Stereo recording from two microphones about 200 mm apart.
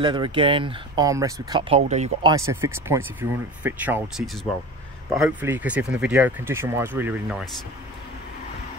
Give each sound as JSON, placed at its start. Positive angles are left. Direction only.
{"t": 0.0, "sound": "speech", "side_deg": -25}
{"t": 2.2, "sound": "speech", "side_deg": -15}
{"t": 5.1, "sound": "speech", "side_deg": -5}